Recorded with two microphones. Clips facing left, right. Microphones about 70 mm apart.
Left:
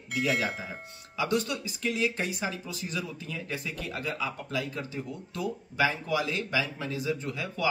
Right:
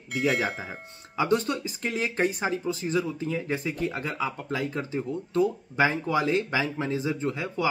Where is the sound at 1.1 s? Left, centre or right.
Right.